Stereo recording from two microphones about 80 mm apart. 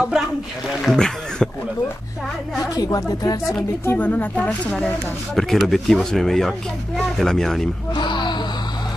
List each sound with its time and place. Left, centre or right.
0.8 s speech: centre
2.7 s speech: left
3.8 s speech: left
5.3 s speech: centre
7.9 s speech: left